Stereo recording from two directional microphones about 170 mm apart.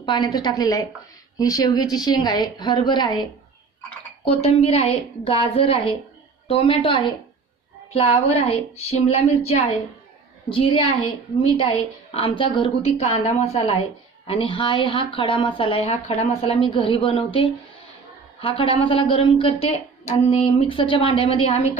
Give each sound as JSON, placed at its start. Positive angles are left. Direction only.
{"t": 0.0, "sound": "a woman's voice", "side_deg": 25}
{"t": 4.2, "sound": "speech", "side_deg": 35}
{"t": 18.5, "sound": "speech", "side_deg": 30}